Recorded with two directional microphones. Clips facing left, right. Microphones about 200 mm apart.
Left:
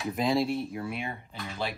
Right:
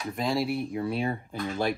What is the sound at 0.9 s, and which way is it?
Speech, 30° right (ahead or behind).